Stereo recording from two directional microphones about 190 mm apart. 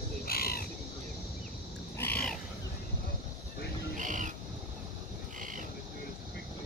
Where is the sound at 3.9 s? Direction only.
40° right (ahead or behind).